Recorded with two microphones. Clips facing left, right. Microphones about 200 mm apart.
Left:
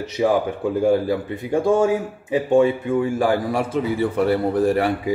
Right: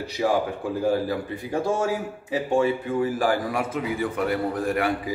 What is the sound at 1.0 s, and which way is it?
A man's voice, 25° left (ahead or behind).